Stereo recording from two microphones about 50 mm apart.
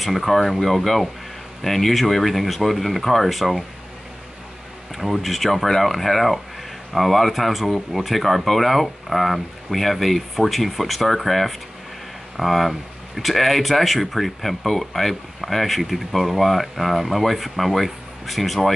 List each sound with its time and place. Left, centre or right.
0.0 s speech: centre
4.9 s speech: centre